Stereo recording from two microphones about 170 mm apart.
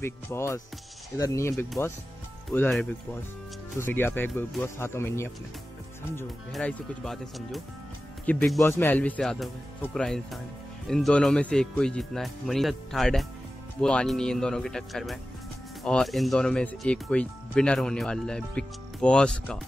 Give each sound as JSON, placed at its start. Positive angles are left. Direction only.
{"t": 0.0, "sound": "speech", "side_deg": 15}
{"t": 3.7, "sound": "speech", "side_deg": 15}
{"t": 6.5, "sound": "speech", "side_deg": 0}